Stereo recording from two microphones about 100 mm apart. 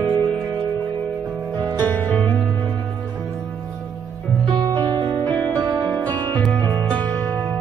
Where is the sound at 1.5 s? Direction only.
45° right (ahead or behind).